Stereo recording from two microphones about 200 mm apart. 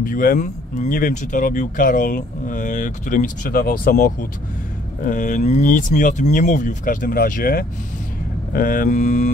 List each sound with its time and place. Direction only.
0.0 s speech: 45° left (ahead or behind)